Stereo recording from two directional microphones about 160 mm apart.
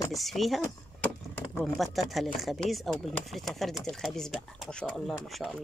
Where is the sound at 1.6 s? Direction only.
Centre (ahead or behind).